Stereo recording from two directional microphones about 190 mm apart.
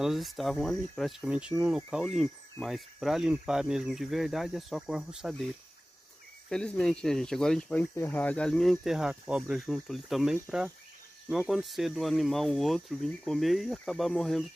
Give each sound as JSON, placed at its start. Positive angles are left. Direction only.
{"t": 0.0, "sound": "speech", "side_deg": 0}
{"t": 6.5, "sound": "speech", "side_deg": 5}